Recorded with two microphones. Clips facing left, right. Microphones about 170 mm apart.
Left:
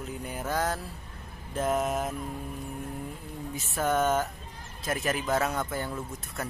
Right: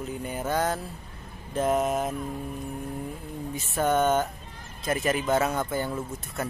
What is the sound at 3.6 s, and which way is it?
Speech, centre (ahead or behind).